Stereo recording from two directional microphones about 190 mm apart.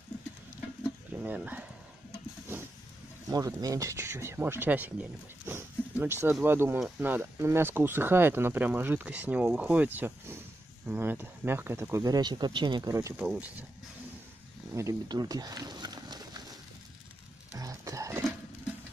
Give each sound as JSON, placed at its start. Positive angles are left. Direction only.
{"t": 1.2, "sound": "speech", "side_deg": -10}
{"t": 3.3, "sound": "speech", "side_deg": -20}
{"t": 14.8, "sound": "speech", "side_deg": -20}
{"t": 17.6, "sound": "a sound", "side_deg": -15}